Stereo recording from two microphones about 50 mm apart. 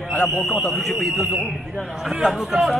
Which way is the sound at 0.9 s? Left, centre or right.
Centre.